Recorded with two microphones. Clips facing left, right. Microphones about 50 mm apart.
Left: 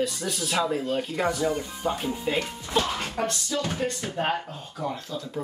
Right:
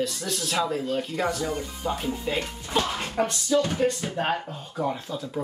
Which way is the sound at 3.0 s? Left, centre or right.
Centre.